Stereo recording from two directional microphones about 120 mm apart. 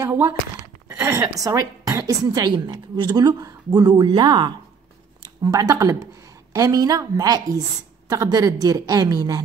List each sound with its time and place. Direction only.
0.0 s a woman's voice: 25° right (ahead or behind)